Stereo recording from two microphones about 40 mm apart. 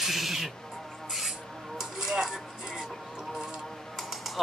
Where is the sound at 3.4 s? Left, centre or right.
Centre.